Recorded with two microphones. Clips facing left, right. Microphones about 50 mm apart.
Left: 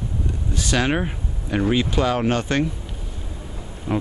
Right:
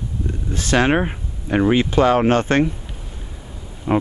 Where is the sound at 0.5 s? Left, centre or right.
Right.